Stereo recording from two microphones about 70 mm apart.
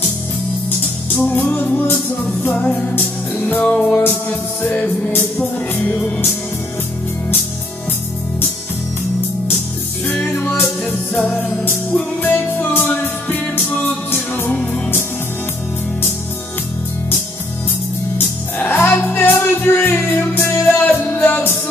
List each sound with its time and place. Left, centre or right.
0.7 s music: left
10.3 s music: left
11.1 s music: centre
12.2 s music: left
18.1 s music: left